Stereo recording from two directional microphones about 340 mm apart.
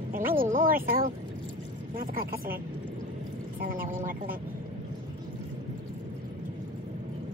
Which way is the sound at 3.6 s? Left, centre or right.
Right.